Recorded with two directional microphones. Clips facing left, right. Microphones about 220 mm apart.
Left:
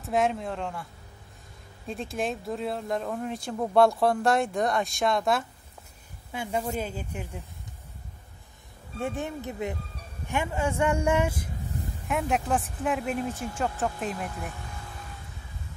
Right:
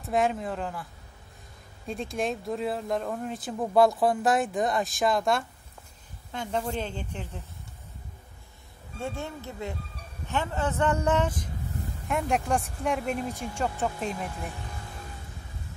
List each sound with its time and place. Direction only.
0.0 s speech: centre (ahead or behind)
1.9 s speech: centre (ahead or behind)
9.0 s speech: 15° left (ahead or behind); by 14.5 s centre (ahead or behind)